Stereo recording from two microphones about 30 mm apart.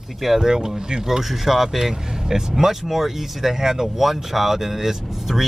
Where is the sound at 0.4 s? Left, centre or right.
Centre.